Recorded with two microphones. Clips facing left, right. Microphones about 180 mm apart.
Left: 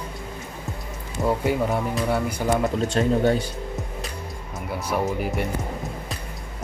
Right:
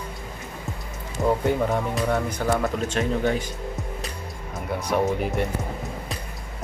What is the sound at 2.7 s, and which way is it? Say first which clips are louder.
Speech: left 3 dB; 35° left (ahead or behind).